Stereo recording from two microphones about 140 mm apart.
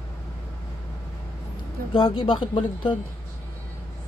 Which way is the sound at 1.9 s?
35° left (ahead or behind).